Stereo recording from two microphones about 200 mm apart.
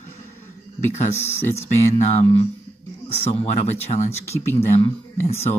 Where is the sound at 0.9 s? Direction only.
35° left (ahead or behind).